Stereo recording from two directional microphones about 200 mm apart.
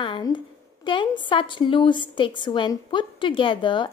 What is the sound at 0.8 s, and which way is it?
A woman's voice, 25° left (ahead or behind).